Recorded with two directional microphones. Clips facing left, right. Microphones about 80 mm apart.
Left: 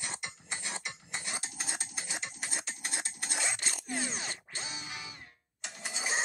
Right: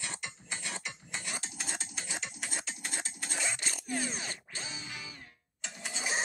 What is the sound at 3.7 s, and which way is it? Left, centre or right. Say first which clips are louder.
Music: right 1 dB; left.